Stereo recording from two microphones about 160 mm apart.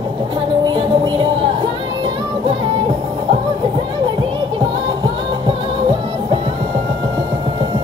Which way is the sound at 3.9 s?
30° right (ahead or behind).